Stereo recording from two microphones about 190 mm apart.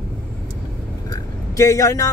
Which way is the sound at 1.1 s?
15° left (ahead or behind).